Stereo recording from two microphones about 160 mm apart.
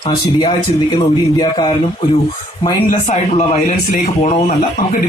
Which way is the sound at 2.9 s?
50° left (ahead or behind).